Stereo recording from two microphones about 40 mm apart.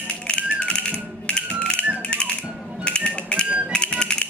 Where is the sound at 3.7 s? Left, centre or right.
Left.